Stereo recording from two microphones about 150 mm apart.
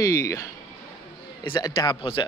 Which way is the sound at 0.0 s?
20° left (ahead or behind).